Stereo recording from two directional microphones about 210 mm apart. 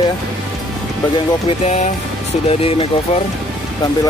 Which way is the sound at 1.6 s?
30° left (ahead or behind).